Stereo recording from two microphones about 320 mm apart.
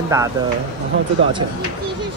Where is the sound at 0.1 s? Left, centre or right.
Centre.